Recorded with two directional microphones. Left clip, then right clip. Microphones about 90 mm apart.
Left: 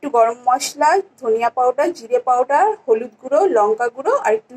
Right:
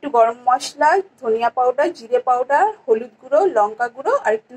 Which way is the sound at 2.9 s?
30° left (ahead or behind).